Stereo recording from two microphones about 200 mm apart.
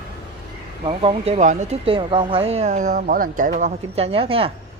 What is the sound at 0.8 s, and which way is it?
Speech, 30° right (ahead or behind).